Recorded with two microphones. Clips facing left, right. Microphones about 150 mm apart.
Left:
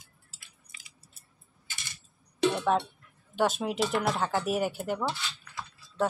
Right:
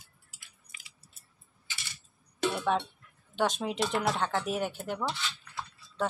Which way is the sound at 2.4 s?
5° right (ahead or behind).